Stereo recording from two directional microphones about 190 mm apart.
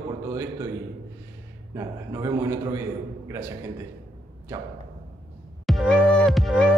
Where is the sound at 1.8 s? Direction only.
15° right (ahead or behind).